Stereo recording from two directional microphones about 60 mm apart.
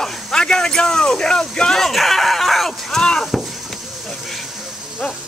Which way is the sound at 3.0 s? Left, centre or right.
Centre.